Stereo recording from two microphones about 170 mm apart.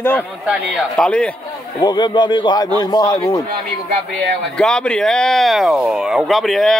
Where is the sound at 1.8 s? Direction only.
25° left (ahead or behind).